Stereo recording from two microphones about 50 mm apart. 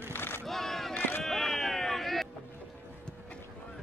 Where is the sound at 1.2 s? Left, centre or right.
Centre.